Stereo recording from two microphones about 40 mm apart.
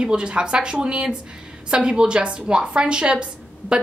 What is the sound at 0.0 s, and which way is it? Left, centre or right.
Speech, right.